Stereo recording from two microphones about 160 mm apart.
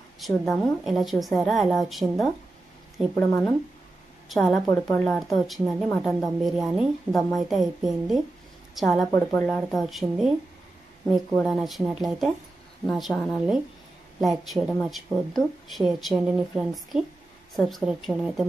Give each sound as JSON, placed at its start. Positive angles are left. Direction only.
{"t": 0.2, "sound": "speech", "side_deg": 0}
{"t": 11.4, "sound": "speech", "side_deg": 0}